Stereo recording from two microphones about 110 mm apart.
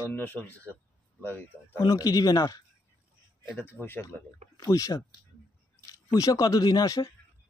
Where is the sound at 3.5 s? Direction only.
20° left (ahead or behind).